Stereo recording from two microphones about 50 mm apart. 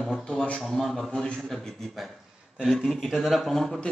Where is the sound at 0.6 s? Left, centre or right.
Centre.